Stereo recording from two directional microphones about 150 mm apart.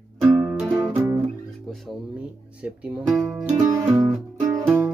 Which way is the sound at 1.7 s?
5° right (ahead or behind).